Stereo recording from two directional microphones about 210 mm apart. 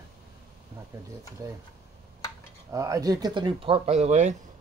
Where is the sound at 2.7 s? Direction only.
15° right (ahead or behind); by 4.3 s 35° right (ahead or behind).